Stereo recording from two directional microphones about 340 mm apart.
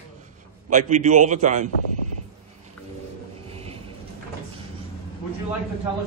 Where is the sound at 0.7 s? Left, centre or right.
Right.